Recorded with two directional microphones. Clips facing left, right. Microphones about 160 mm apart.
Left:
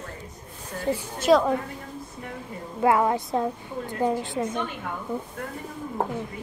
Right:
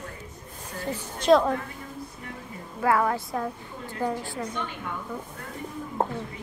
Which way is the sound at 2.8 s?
20° left (ahead or behind).